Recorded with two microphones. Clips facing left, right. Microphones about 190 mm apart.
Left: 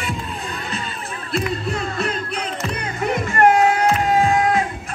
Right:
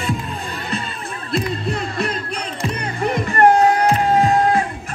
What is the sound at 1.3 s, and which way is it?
Music, 35° right (ahead or behind).